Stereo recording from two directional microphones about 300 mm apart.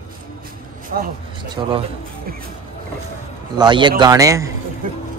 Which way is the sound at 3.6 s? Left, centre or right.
Centre.